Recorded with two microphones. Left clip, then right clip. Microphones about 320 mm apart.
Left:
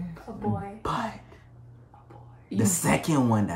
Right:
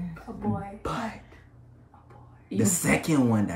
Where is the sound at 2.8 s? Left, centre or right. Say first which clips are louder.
Even; centre.